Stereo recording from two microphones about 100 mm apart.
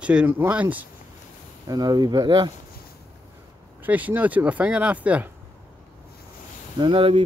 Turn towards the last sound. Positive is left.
turn(degrees=-60)  # may be behind; listen again after turning